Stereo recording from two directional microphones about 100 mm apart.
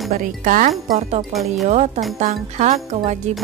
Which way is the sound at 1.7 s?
90° right.